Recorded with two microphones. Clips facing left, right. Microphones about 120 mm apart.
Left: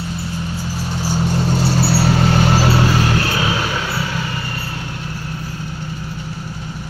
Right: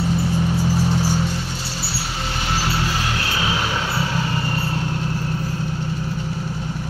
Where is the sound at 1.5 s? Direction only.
55° left (ahead or behind).